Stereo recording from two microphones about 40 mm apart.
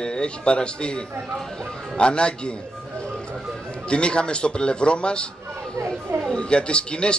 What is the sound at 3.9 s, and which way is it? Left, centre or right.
Speech, left.